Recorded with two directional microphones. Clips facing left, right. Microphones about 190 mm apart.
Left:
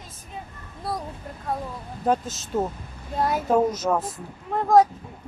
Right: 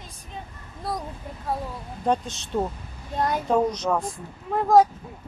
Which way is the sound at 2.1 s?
5° left (ahead or behind).